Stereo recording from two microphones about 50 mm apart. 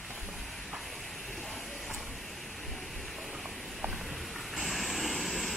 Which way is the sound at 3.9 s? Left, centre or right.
Centre.